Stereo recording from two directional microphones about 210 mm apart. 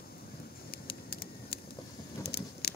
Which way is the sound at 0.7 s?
45° left (ahead or behind).